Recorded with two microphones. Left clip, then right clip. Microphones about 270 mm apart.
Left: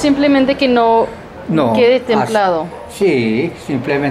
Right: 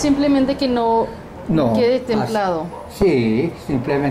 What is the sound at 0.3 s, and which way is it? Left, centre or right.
A woman's voice, centre.